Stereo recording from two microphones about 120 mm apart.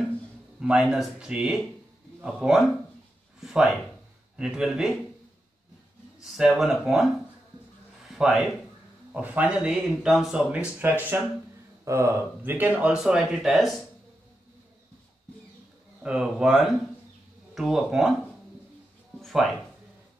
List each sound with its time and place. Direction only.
0.6 s speech: 5° right (ahead or behind)
6.2 s speech: 5° right (ahead or behind)
8.1 s a man's voice: 5° right (ahead or behind)
16.0 s speech: 5° right (ahead or behind)